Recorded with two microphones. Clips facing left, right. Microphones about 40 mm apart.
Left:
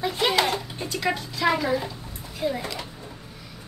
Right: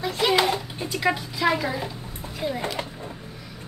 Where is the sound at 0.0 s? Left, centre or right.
Centre.